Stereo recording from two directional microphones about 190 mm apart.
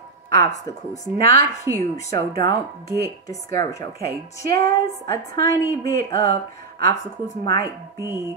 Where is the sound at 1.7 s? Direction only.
15° right (ahead or behind).